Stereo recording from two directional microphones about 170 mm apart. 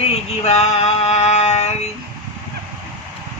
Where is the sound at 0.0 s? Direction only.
40° left (ahead or behind).